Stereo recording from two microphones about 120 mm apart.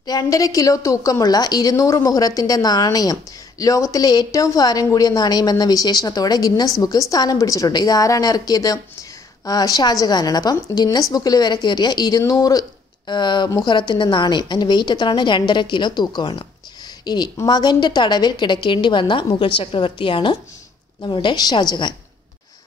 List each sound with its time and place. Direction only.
0.0 s a woman's voice: 30° left (ahead or behind)